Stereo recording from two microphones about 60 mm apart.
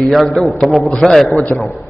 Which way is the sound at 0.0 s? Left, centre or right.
Centre.